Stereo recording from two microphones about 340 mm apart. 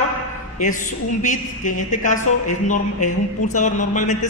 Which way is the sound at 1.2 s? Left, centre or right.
Left.